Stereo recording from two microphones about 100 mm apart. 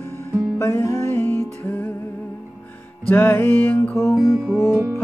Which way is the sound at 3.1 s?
20° left (ahead or behind).